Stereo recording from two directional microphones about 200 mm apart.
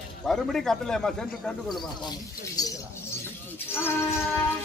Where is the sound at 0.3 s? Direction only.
Centre (ahead or behind).